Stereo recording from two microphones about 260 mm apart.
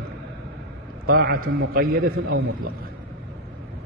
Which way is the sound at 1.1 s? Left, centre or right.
Right.